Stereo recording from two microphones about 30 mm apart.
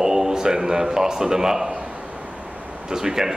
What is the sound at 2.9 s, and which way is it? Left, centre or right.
Speech, centre.